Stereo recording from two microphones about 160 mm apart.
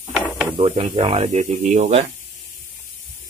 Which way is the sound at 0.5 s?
35° right (ahead or behind).